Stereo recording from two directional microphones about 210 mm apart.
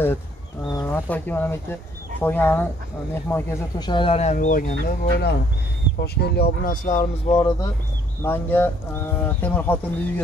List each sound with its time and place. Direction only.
0.7 s speech: 15° left (ahead or behind); by 4.7 s 40° left (ahead or behind)
4.8 s speech: 50° left (ahead or behind); by 7.7 s 25° left (ahead or behind)
8.2 s speech: 10° left (ahead or behind)